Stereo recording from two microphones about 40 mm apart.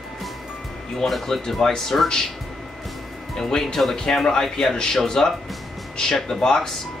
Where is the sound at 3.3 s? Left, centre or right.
Centre.